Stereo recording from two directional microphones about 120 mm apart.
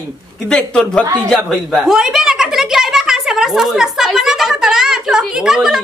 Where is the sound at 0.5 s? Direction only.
5° left (ahead or behind).